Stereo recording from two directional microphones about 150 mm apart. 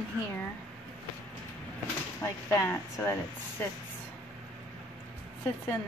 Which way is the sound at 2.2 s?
15° left (ahead or behind).